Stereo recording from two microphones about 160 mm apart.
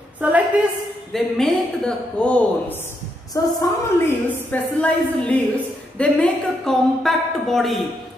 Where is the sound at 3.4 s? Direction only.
20° left (ahead or behind).